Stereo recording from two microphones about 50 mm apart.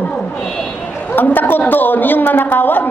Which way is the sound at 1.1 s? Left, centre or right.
Left.